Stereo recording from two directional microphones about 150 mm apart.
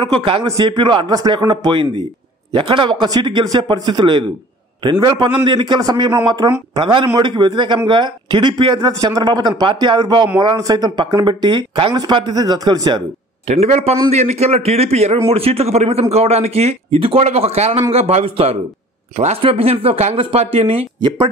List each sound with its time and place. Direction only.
0.0 s a man's voice: 35° right (ahead or behind)
13.5 s a man's voice: 45° right (ahead or behind)